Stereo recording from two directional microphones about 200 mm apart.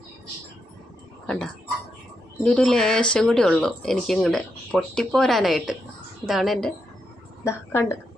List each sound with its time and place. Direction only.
1.2 s speech: 5° left (ahead or behind)
7.4 s a woman's voice: 15° left (ahead or behind)